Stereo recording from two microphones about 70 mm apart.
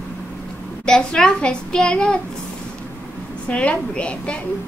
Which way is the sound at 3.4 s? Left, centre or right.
Centre.